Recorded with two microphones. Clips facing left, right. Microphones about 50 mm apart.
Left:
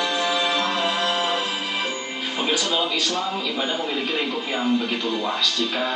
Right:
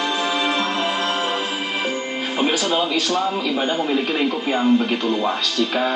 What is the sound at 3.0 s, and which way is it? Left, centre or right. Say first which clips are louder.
Speech: right 4 dB; right.